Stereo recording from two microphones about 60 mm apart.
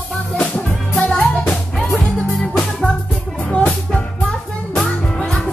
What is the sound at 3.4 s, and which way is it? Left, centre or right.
Music, centre.